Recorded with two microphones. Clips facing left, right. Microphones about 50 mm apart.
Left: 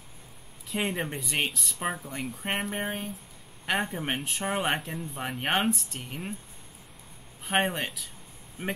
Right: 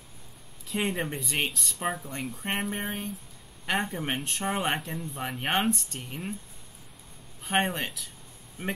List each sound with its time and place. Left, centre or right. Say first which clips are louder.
0.7 s speech: right 1 dB; centre
7.4 s speech: even; centre
8.6 s speech: even; centre